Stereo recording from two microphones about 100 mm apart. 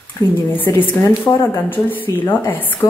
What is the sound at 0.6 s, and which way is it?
Speech, 20° left (ahead or behind).